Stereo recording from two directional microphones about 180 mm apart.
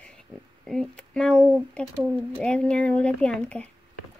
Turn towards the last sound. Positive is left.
turn(degrees=5)  # may be behind; listen again after turning